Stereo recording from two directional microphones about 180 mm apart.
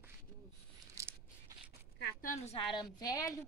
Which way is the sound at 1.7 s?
60° left (ahead or behind).